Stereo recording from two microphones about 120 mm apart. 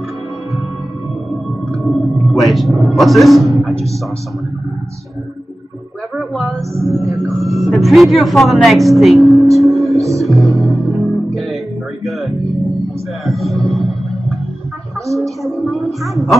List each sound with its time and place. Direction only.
1.7 s speech: centre (ahead or behind)
6.7 s speech: 25° right (ahead or behind)
7.3 s speech: centre (ahead or behind)
9.6 s music: centre (ahead or behind)
9.9 s music: 25° right (ahead or behind)
10.2 s music: centre (ahead or behind)
15.1 s speech: centre (ahead or behind)